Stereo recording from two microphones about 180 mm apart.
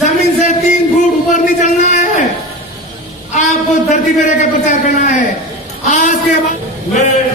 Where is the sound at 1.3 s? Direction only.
40° left (ahead or behind).